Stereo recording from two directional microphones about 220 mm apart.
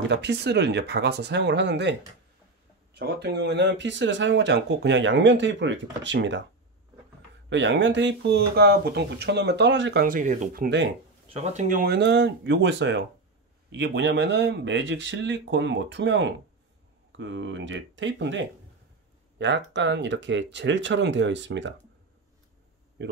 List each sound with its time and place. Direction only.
0.1 s speech: 50° right (ahead or behind)
3.0 s speech: 50° right (ahead or behind)
7.4 s speech: 55° right (ahead or behind)
10.0 s speech: 35° right (ahead or behind)
11.3 s speech: 30° right (ahead or behind); by 21.7 s 55° right (ahead or behind)
23.0 s speech: 55° right (ahead or behind)